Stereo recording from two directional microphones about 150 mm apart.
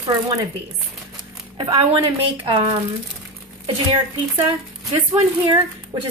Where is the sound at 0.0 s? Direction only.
25° right (ahead or behind).